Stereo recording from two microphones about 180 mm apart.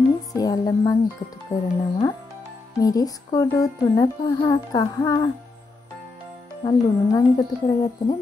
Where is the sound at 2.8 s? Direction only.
20° left (ahead or behind).